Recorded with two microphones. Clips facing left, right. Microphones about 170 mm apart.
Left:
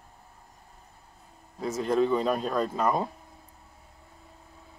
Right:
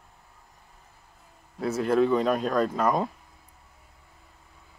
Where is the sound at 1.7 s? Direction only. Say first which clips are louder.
Right 2 dB; centre (ahead or behind).